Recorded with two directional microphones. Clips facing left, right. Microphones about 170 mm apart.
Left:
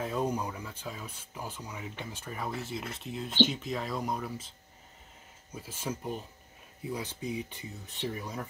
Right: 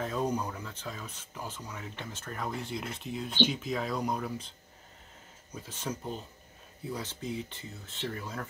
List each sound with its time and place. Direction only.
0.0 s speech: 10° left (ahead or behind)